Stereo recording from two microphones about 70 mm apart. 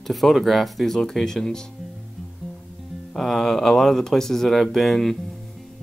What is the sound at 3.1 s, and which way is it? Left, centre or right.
Speech, centre.